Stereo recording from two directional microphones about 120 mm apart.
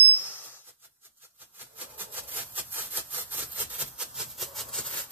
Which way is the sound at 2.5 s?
15° right (ahead or behind).